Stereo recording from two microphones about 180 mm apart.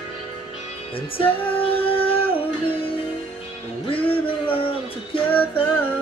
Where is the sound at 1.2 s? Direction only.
30° left (ahead or behind).